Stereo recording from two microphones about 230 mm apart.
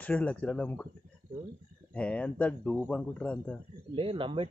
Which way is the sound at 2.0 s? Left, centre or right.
Centre.